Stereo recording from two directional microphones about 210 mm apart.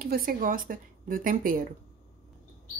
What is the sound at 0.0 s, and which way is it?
Speech, 45° right (ahead or behind).